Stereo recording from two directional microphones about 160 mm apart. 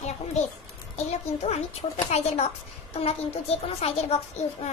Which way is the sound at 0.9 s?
45° left (ahead or behind).